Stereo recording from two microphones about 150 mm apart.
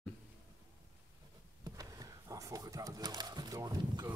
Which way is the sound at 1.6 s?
25° right (ahead or behind).